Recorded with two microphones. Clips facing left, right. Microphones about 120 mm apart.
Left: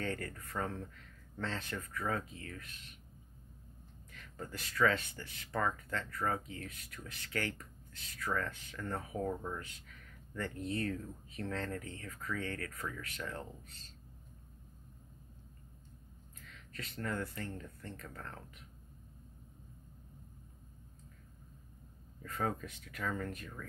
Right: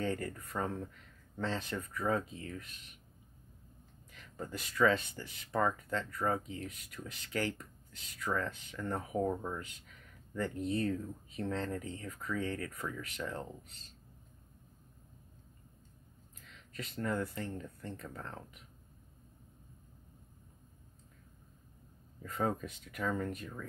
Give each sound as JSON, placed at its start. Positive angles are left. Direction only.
{"t": 0.0, "sound": "speech", "side_deg": -20}
{"t": 4.1, "sound": "speech", "side_deg": -20}
{"t": 16.5, "sound": "speech", "side_deg": -20}
{"t": 22.2, "sound": "speech", "side_deg": -20}